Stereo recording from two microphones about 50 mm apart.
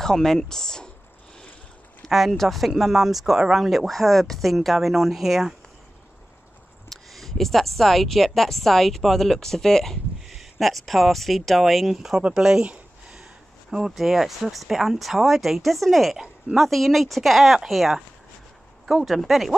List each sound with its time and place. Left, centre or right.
0.0 s speech: centre
2.0 s speech: centre
6.9 s speech: centre
10.2 s speech: centre
12.2 s speech: centre